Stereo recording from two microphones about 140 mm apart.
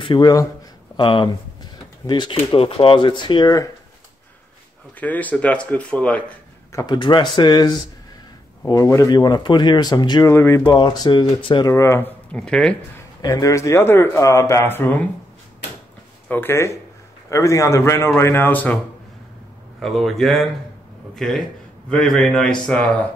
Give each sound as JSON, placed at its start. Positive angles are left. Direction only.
{"t": 0.0, "sound": "speech", "side_deg": 30}
{"t": 0.9, "sound": "a sound", "side_deg": 35}
{"t": 2.3, "sound": "speech", "side_deg": 40}
{"t": 5.0, "sound": "speech", "side_deg": 10}
{"t": 6.7, "sound": "a man's voice", "side_deg": 25}
{"t": 10.3, "sound": "speech", "side_deg": 20}
{"t": 10.6, "sound": "speech", "side_deg": 30}
{"t": 11.6, "sound": "speech", "side_deg": 20}
{"t": 13.2, "sound": "a man's voice", "side_deg": 25}
{"t": 16.3, "sound": "a man's voice", "side_deg": 15}
{"t": 19.8, "sound": "a man's voice", "side_deg": 0}